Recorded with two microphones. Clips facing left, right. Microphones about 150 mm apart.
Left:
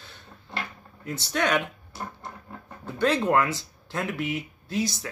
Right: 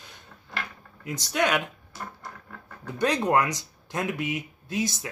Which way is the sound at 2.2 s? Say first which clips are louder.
Left 2 dB; 25° left (ahead or behind).